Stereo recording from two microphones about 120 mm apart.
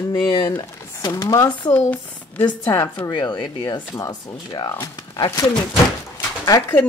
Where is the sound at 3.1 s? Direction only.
40° left (ahead or behind).